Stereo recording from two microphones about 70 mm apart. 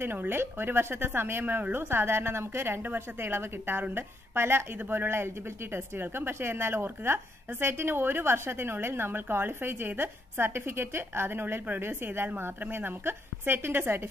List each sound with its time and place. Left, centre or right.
0.0 s a woman's voice: right